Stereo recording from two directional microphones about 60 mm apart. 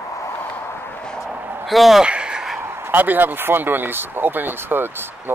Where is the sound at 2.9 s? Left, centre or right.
Right.